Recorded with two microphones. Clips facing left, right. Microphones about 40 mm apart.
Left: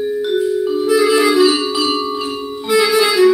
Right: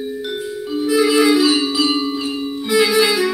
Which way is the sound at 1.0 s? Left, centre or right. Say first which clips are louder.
Left 1 dB; left.